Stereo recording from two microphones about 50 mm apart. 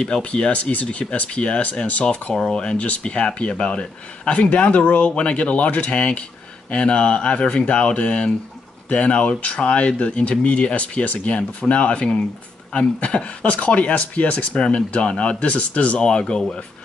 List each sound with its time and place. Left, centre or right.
0.2 s speech: left